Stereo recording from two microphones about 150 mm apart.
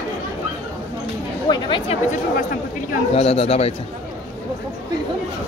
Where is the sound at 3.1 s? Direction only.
45° left (ahead or behind).